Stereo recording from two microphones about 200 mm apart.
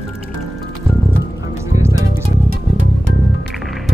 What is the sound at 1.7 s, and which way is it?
Music, 15° right (ahead or behind).